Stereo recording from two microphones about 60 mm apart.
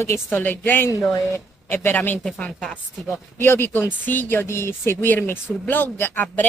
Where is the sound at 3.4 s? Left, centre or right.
Left.